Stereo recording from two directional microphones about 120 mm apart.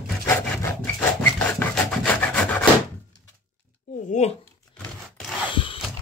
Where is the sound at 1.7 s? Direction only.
5° left (ahead or behind).